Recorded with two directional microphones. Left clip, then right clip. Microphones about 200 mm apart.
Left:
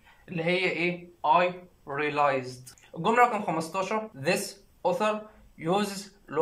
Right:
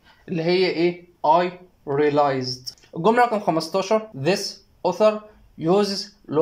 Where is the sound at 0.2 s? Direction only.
45° right (ahead or behind).